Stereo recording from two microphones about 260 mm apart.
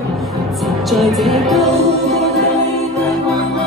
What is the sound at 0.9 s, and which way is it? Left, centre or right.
Music, centre.